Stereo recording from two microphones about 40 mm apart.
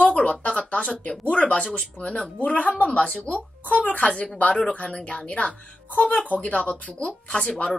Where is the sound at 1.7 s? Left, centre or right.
Left.